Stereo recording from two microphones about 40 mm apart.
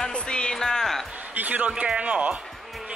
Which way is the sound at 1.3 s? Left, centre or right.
Right.